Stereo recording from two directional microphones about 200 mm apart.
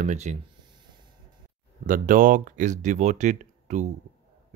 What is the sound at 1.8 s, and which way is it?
Speech, 45° right (ahead or behind).